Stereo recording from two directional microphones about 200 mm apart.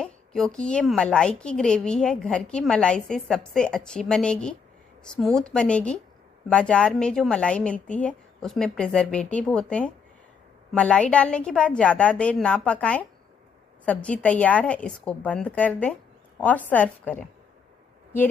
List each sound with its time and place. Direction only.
0.0 s a woman's voice: 5° left (ahead or behind)